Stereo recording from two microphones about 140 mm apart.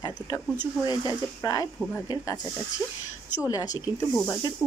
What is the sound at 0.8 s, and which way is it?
Speech, 25° left (ahead or behind).